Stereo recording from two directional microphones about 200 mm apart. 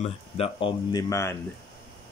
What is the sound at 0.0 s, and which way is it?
Speech, 30° left (ahead or behind).